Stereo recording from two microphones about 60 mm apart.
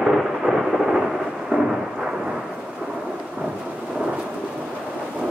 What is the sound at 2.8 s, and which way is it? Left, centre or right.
Thunder, centre.